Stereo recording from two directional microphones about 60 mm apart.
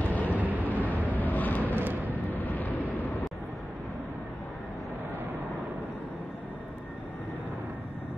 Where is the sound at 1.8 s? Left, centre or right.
Right.